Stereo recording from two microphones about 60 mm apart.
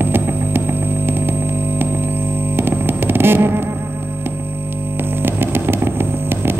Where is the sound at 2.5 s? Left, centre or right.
Right.